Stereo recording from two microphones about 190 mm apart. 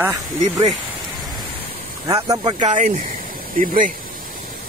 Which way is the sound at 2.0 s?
20° right (ahead or behind).